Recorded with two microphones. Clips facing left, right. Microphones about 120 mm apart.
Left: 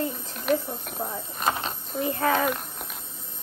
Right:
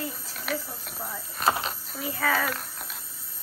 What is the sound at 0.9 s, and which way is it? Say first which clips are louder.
Speech: left 2 dB; 20° left (ahead or behind).